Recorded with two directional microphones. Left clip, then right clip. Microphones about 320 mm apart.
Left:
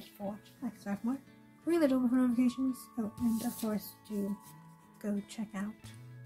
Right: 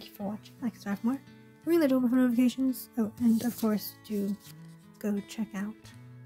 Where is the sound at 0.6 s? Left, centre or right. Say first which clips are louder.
Right 6 dB; right.